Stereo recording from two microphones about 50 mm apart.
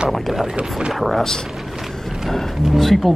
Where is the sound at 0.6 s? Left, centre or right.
Centre.